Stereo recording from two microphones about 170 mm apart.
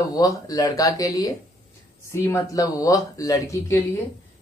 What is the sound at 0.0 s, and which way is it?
Speech, 20° left (ahead or behind).